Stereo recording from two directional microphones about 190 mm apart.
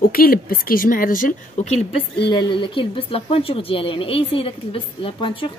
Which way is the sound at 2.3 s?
25° left (ahead or behind).